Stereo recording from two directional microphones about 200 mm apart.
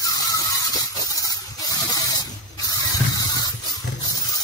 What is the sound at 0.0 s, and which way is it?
Squeal, 20° left (ahead or behind).